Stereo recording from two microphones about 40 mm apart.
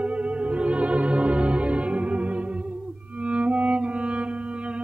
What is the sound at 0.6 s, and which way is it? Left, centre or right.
Music, right.